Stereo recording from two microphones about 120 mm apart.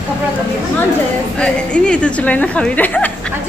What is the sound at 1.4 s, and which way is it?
A woman's voice, 10° left (ahead or behind).